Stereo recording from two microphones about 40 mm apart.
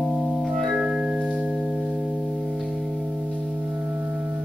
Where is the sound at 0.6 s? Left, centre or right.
Centre.